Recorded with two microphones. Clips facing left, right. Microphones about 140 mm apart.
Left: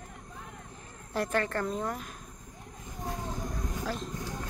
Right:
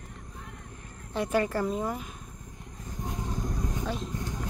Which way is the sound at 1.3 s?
10° right (ahead or behind).